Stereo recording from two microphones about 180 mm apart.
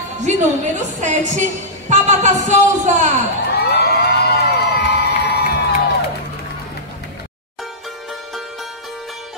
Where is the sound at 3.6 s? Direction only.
65° left (ahead or behind).